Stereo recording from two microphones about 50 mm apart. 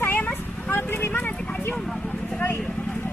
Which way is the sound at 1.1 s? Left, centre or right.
Left.